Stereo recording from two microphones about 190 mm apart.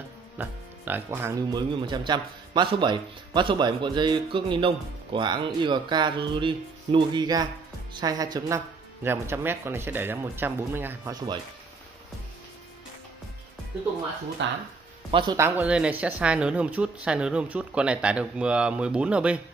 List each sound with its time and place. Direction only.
0.4 s speech: 10° right (ahead or behind)
14.4 s speech: 65° right (ahead or behind)
15.0 s speech: 25° right (ahead or behind)
15.3 s speech: 10° right (ahead or behind)